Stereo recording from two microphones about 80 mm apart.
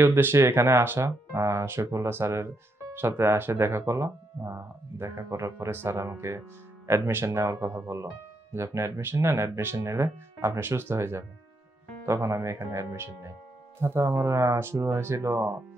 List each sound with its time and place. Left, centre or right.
0.0 s speech: right